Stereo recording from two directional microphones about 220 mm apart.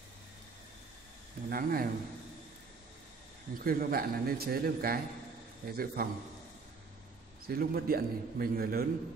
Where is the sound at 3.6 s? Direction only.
40° right (ahead or behind).